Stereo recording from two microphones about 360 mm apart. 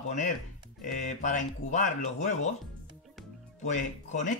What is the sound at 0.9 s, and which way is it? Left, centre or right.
A man's voice, left.